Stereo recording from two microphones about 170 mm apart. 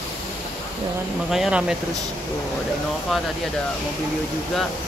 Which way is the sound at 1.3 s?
5° right (ahead or behind).